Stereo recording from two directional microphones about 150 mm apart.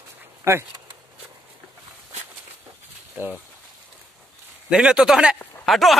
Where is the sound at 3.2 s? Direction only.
10° right (ahead or behind).